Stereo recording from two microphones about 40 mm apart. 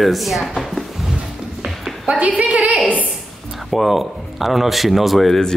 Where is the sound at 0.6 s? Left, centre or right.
Centre.